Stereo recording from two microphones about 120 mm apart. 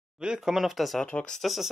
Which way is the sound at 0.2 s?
5° right (ahead or behind).